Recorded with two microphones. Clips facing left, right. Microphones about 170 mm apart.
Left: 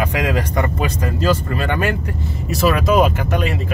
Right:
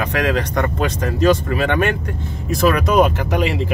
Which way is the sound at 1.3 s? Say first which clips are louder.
Right 2 dB; 85° right.